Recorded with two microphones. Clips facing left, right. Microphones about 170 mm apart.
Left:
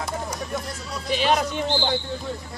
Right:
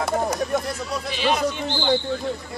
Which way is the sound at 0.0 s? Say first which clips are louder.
Right 7 dB; 65° right (ahead or behind).